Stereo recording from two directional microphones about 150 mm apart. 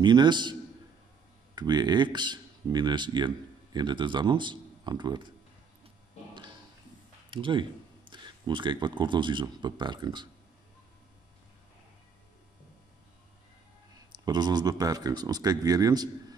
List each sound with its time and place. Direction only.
0.0 s speech: 30° right (ahead or behind)
7.2 s speech: 35° right (ahead or behind)
14.1 s speech: 30° right (ahead or behind)